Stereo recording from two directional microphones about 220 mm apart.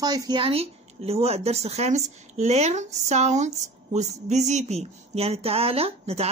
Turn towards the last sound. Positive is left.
turn(degrees=-25)  # may be behind; listen again after turning